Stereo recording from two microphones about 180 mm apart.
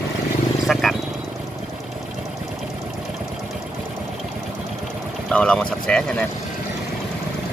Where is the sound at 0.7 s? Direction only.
Centre (ahead or behind).